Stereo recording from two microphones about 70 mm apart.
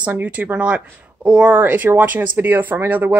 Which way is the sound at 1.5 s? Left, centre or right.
Right.